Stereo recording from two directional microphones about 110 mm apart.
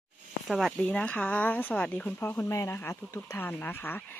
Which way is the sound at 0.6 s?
Centre (ahead or behind).